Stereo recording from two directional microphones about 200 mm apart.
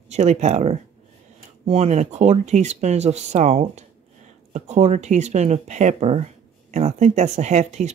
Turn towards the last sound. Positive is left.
turn(degrees=-35)  # may be behind; listen again after turning